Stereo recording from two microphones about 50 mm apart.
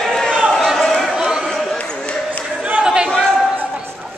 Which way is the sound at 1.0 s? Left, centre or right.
Centre.